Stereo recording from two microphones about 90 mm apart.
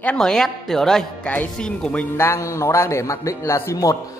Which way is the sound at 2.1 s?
30° left (ahead or behind).